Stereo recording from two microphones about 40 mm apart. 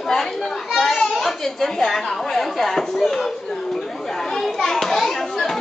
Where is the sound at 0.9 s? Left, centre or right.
Centre.